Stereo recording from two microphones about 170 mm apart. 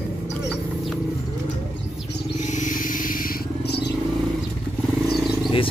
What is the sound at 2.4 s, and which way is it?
Vehicle, 45° left (ahead or behind).